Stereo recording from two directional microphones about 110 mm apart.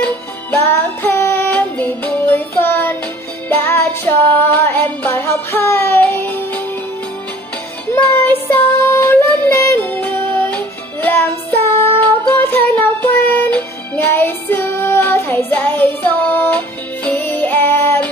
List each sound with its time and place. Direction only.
0.0 s music: 15° left (ahead or behind)
7.9 s music: 15° left (ahead or behind)
12.3 s music: 15° left (ahead or behind)